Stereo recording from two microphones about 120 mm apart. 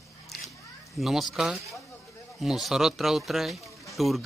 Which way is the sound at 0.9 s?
Centre (ahead or behind).